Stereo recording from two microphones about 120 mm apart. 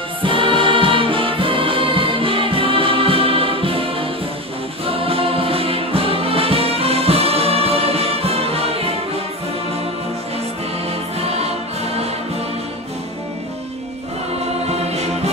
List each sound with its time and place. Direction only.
0.2 s music: 45° right (ahead or behind)
10.9 s music: 60° right (ahead or behind)
14.7 s music: 65° right (ahead or behind)